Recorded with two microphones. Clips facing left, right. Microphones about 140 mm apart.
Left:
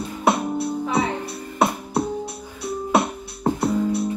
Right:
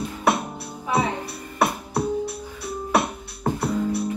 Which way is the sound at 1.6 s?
20° left (ahead or behind).